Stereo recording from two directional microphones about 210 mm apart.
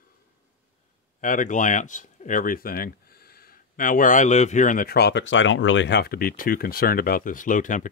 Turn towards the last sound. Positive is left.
turn(degrees=40)  # may be behind; listen again after turning